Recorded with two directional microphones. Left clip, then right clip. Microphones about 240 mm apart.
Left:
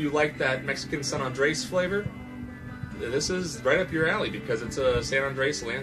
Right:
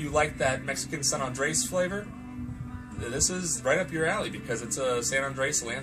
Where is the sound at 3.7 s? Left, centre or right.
Centre.